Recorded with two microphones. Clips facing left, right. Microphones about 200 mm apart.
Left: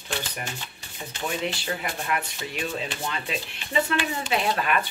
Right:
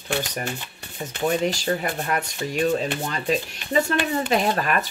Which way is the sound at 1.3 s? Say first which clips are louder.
Right 7 dB; 40° right (ahead or behind).